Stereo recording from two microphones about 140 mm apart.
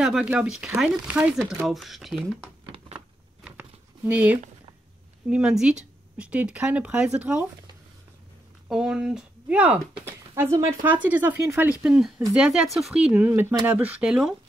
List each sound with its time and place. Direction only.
0.0 s speech: 5° right (ahead or behind)
1.7 s speech: centre (ahead or behind)
2.6 s a sound: 40° right (ahead or behind)
3.4 s a sound: 10° right (ahead or behind)
5.3 s speech: 5° right (ahead or behind)
8.6 s speech: 5° right (ahead or behind)